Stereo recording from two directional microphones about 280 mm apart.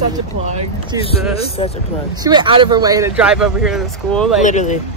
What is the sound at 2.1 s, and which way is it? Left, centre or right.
Speech, centre.